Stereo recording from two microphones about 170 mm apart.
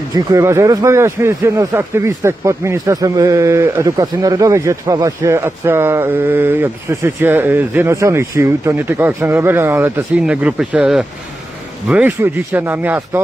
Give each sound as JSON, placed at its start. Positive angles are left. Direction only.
{"t": 0.1, "sound": "speech", "side_deg": -20}